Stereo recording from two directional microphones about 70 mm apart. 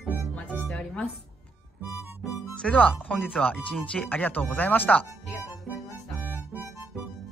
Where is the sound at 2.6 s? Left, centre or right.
Centre.